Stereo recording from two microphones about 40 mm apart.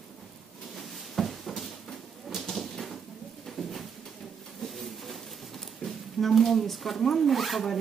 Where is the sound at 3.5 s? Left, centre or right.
Centre.